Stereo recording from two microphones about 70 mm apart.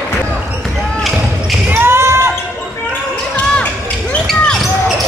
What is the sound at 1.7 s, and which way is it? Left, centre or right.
Basketball bounce, right.